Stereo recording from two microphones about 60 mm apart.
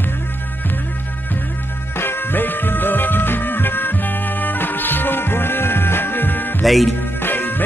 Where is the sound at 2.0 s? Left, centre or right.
Left.